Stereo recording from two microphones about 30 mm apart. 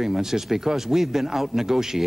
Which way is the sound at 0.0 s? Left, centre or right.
Centre.